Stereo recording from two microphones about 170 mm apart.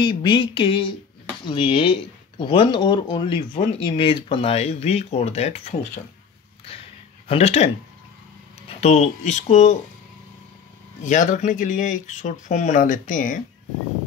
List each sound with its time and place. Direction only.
0.0 s speech: 25° left (ahead or behind)
7.2 s speech: 35° left (ahead or behind)
11.1 s speech: 45° left (ahead or behind)